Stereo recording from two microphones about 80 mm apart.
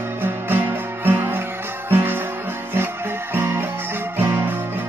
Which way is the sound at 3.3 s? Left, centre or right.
Right.